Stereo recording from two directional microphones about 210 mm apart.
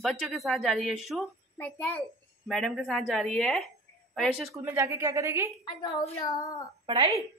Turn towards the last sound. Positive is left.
turn(degrees=-20)  # may be behind; listen again after turning